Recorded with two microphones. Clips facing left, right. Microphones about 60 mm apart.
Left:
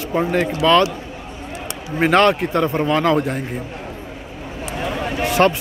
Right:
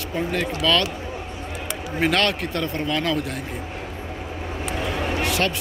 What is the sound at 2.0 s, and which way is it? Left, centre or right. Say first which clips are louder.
Speech: left 7 dB; left.